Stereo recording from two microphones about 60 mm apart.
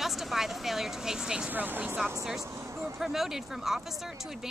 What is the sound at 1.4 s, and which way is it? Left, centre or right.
Speech, right.